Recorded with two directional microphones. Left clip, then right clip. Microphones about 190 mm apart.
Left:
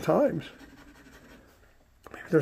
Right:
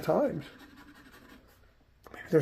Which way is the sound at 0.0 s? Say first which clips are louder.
Left 4 dB; 40° left (ahead or behind).